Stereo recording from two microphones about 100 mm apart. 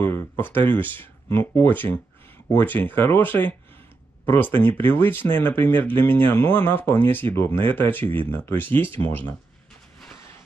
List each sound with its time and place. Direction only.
0.0 s speech: 20° left (ahead or behind)